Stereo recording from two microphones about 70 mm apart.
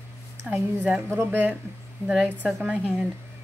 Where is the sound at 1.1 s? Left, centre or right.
Right.